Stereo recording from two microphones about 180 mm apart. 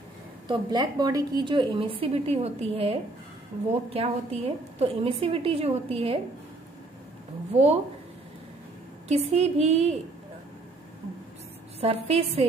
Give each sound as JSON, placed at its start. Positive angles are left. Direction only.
{"t": 0.5, "sound": "a woman's voice", "side_deg": -25}
{"t": 7.5, "sound": "a woman's voice", "side_deg": -35}
{"t": 9.1, "sound": "a woman's voice", "side_deg": -35}
{"t": 11.8, "sound": "a woman's voice", "side_deg": -35}